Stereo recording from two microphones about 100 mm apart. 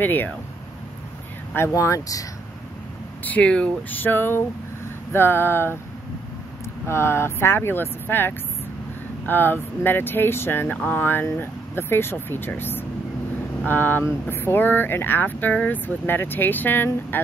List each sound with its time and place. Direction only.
0.0 s speech: 20° left (ahead or behind)
1.5 s speech: 25° left (ahead or behind)
3.3 s speech: 10° left (ahead or behind)
6.9 s speech: 25° left (ahead or behind)